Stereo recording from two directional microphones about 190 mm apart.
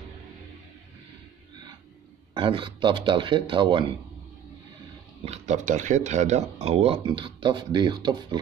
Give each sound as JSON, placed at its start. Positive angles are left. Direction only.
{"t": 2.3, "sound": "speech", "side_deg": -25}
{"t": 5.2, "sound": "speech", "side_deg": -35}